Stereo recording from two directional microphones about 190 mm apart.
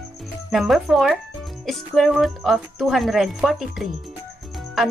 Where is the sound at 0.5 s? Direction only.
Centre (ahead or behind).